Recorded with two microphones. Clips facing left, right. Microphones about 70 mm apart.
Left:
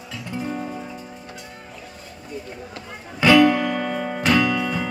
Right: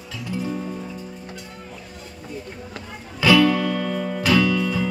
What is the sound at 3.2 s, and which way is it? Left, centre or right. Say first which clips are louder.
Music: left 2 dB; centre.